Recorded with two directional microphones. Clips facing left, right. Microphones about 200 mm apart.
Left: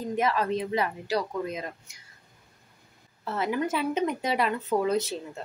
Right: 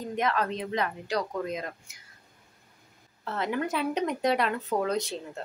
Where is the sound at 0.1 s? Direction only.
5° left (ahead or behind).